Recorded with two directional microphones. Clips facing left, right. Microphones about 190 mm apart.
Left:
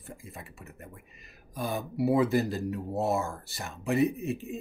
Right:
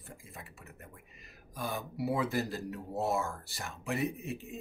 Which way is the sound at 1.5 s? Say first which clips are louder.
Left 5 dB; 20° left (ahead or behind).